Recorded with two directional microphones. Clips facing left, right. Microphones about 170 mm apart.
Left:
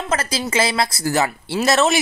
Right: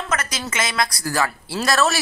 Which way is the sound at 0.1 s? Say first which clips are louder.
Left 7 dB; 30° left (ahead or behind).